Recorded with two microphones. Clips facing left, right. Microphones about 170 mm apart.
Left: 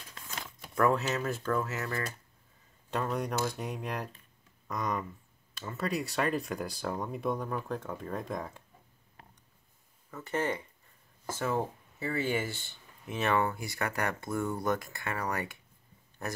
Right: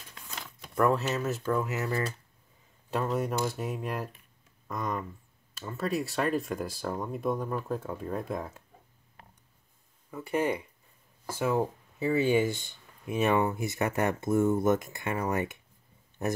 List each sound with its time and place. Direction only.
0.3 s speech: centre (ahead or behind); by 2.0 s 20° right (ahead or behind)
2.9 s speech: 5° right (ahead or behind)
10.1 s speech: 10° right (ahead or behind)